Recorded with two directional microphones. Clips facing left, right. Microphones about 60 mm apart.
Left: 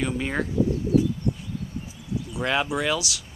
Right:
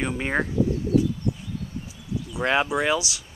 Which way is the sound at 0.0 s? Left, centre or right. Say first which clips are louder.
Right 1 dB; right.